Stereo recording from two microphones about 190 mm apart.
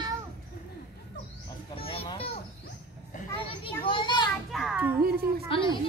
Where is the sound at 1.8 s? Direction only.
30° left (ahead or behind).